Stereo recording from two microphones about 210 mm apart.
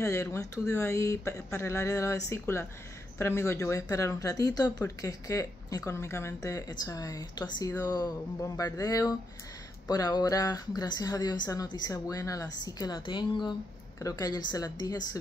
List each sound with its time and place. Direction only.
0.0 s a woman's voice: 15° left (ahead or behind)